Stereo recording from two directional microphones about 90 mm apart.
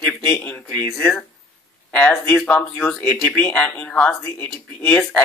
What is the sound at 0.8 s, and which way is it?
Speech, 5° left (ahead or behind).